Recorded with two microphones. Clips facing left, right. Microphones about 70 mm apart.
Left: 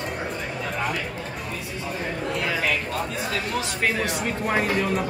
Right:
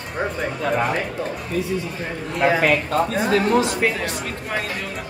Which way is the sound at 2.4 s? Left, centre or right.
Right.